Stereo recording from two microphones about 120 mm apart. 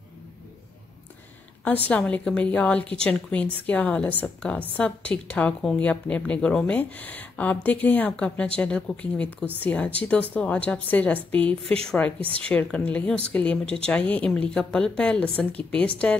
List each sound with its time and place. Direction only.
1.9 s a woman's voice: 10° left (ahead or behind)